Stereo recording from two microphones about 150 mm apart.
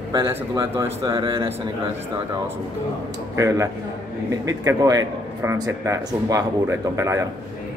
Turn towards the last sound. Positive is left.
turn(degrees=-20)  # may be behind; listen again after turning